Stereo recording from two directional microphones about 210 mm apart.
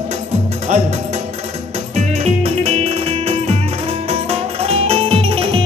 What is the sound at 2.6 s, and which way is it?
Music, 30° right (ahead or behind).